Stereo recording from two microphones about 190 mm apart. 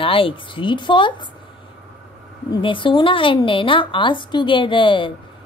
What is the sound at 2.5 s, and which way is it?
A woman's voice, 25° left (ahead or behind).